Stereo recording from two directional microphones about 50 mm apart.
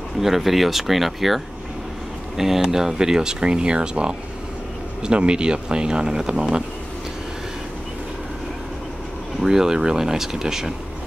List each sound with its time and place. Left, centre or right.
0.2 s speech: centre
9.4 s speech: centre